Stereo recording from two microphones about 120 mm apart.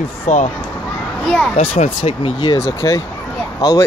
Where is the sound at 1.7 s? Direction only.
60° left (ahead or behind).